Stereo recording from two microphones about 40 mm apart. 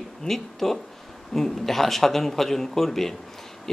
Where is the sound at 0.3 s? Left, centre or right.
Centre.